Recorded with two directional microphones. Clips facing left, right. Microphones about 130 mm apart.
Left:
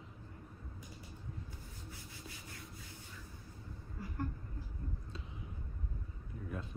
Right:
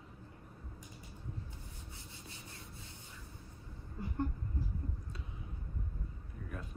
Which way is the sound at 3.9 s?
25° right (ahead or behind).